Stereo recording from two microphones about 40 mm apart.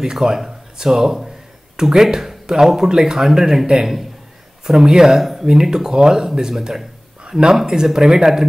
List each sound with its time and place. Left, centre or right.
0.0 s speech: centre
5.2 s speech: centre
5.5 s speech: centre